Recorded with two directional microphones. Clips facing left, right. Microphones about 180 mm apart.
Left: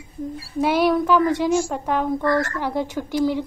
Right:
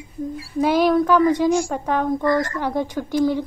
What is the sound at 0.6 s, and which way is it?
A woman's voice, 5° left (ahead or behind).